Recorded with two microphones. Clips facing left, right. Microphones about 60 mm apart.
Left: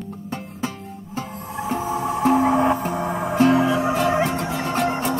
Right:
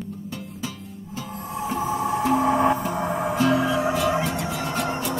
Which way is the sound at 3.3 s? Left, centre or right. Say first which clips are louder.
Left 5 dB; left.